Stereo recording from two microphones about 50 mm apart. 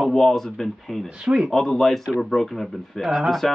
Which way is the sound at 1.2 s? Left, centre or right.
Centre.